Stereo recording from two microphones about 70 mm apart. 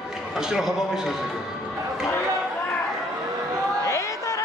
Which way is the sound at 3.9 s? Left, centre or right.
Left.